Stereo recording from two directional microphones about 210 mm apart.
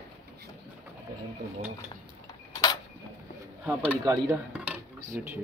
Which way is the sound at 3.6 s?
15° right (ahead or behind).